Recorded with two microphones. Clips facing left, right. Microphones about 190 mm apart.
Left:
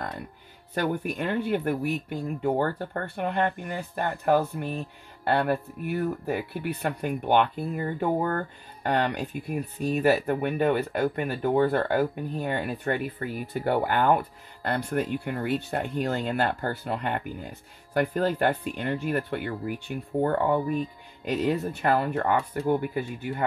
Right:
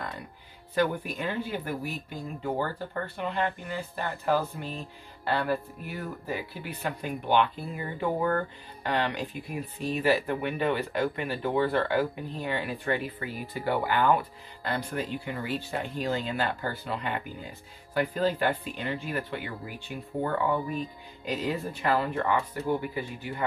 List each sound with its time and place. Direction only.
0.7 s speech: 50° left (ahead or behind)